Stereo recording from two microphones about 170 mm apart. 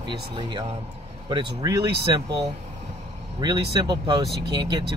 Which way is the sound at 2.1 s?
25° right (ahead or behind).